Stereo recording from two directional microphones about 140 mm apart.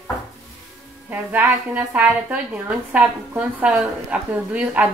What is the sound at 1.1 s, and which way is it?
A woman's voice, 10° right (ahead or behind).